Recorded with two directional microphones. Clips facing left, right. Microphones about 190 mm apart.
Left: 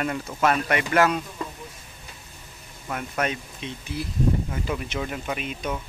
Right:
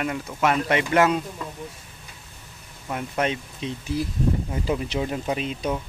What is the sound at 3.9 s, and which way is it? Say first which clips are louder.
Speech: even; 40° right (ahead or behind).